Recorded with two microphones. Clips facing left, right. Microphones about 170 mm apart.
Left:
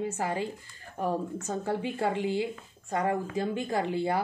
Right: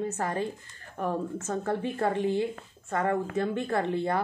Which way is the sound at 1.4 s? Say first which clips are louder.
Right 1 dB; 10° left (ahead or behind).